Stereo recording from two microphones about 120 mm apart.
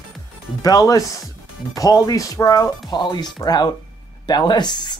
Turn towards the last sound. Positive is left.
turn(degrees=40)  # may be behind; listen again after turning